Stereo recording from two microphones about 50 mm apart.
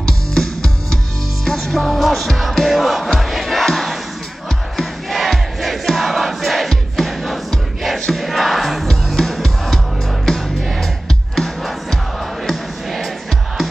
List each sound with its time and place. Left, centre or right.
0.0 s music: centre
1.4 s music: centre
4.7 s crowd: centre
10.2 s music: centre